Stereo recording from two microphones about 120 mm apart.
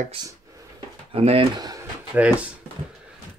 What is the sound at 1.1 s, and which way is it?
Speech, 55° right (ahead or behind).